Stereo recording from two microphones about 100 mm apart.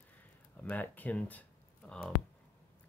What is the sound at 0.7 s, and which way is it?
Speech, 15° left (ahead or behind).